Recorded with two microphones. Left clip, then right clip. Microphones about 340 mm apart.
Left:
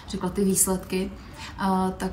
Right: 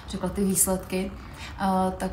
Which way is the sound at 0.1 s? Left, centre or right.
Centre.